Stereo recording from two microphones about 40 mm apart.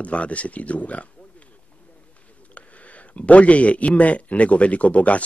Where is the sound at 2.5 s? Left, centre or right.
Left.